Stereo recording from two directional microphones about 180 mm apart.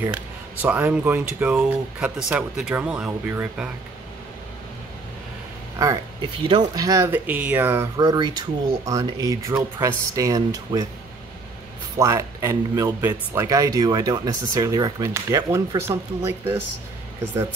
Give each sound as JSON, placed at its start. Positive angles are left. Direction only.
{"t": 0.0, "sound": "speech", "side_deg": -10}
{"t": 6.5, "sound": "speech", "side_deg": -20}
{"t": 8.0, "sound": "speech", "side_deg": -25}
{"t": 12.0, "sound": "speech", "side_deg": -15}